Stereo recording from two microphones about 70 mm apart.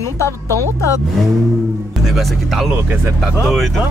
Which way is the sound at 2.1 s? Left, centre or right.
Centre.